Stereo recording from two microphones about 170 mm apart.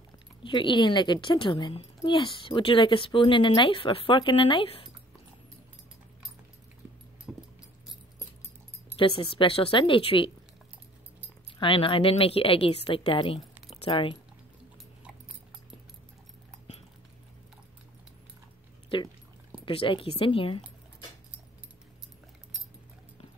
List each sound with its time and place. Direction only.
0.4 s a woman's voice: 30° left (ahead or behind)
7.3 s a sound: 5° right (ahead or behind)
9.2 s a woman's voice: 30° left (ahead or behind)
11.5 s a woman's voice: 30° left (ahead or behind)
13.7 s keys jangling: 35° left (ahead or behind)
18.9 s a woman's voice: 30° left (ahead or behind)